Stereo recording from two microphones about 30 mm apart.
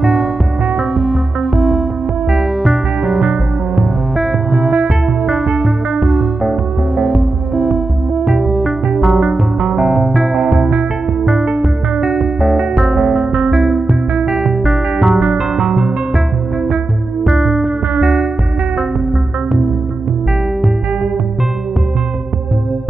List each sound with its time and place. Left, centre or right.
0.0 s music: centre
7.5 s music: centre
13.0 s music: right
13.5 s music: centre
17.2 s music: centre